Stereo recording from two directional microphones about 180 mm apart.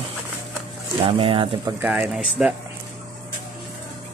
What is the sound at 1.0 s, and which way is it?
Speech, 30° right (ahead or behind).